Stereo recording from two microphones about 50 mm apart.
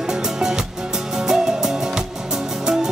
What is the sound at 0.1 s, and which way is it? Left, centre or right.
Music, centre.